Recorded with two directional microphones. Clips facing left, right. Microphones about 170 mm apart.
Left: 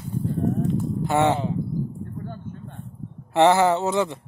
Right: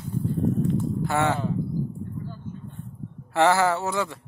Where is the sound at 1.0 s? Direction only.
20° left (ahead or behind).